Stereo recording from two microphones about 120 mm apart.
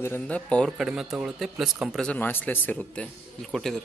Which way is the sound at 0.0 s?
20° left (ahead or behind).